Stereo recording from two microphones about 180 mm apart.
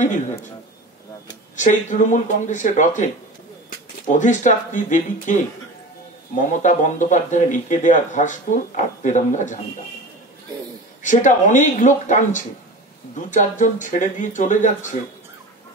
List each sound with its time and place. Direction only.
1.6 s speech: 45° left (ahead or behind)
4.1 s speech: 45° left (ahead or behind)
11.0 s speech: 45° left (ahead or behind)